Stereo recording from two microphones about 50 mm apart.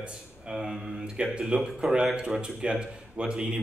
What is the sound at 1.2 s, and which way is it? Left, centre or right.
A man's voice, right.